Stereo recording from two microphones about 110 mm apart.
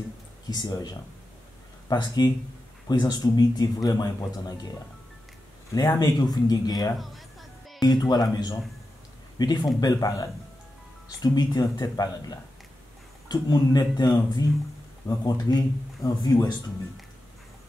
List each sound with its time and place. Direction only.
0.5 s speech: 35° left (ahead or behind)
1.9 s speech: 40° left (ahead or behind)
5.8 s speech: 35° left (ahead or behind)
7.0 s a woman's voice: centre (ahead or behind)
7.8 s speech: 40° left (ahead or behind)